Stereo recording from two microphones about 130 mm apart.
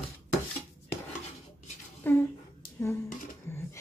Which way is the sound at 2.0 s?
15° left (ahead or behind).